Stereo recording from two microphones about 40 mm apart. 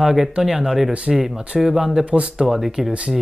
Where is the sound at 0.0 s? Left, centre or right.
Centre.